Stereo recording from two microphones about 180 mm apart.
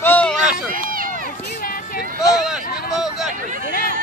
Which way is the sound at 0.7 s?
50° right (ahead or behind).